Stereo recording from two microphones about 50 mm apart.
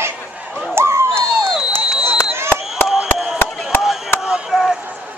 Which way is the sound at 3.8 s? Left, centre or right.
Centre.